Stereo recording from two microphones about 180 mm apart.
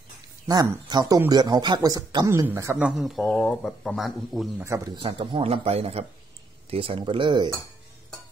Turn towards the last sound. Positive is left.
turn(degrees=-25)  # may be behind; listen again after turning